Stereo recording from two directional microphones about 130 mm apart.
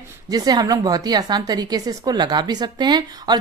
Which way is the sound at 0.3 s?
30° right (ahead or behind).